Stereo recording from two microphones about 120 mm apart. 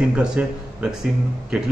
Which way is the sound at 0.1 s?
10° right (ahead or behind).